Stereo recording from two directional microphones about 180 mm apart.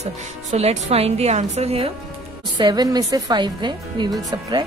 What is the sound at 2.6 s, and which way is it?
A woman's voice, 20° right (ahead or behind).